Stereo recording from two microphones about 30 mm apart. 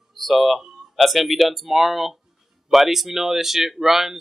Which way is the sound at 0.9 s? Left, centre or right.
Centre.